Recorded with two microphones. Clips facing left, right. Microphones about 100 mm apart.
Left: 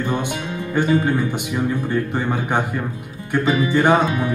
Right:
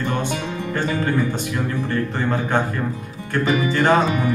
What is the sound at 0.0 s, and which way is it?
Speech, 15° left (ahead or behind).